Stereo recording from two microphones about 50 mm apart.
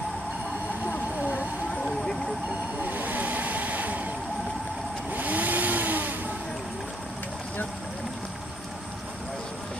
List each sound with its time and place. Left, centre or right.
1.8 s vehicle: centre
2.8 s vehicle: right
5.1 s vehicle: right